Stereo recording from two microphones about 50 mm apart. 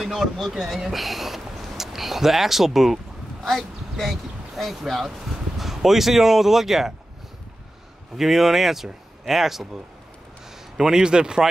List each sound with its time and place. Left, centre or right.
0.0 s speech: centre
8.2 s speech: centre
10.8 s speech: centre